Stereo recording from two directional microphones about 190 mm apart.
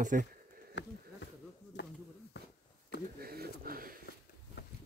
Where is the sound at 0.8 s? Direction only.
65° left (ahead or behind).